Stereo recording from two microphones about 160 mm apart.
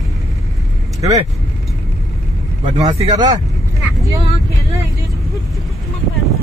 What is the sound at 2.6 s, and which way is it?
Speech, 45° right (ahead or behind).